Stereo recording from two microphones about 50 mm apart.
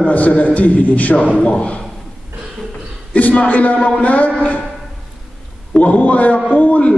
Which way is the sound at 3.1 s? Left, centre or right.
Left.